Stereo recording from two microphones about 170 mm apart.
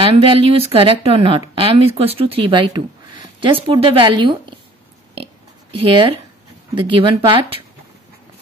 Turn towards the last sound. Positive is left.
turn(degrees=-30)  # may be behind; listen again after turning